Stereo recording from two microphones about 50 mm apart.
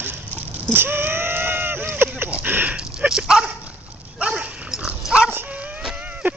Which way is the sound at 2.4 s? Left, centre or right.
Right.